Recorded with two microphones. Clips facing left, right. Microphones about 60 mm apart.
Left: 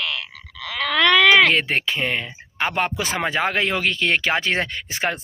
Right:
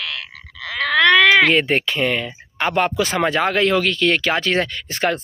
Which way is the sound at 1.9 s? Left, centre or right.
Centre.